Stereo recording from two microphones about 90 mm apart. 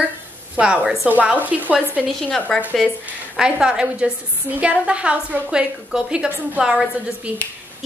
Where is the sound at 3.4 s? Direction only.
10° right (ahead or behind).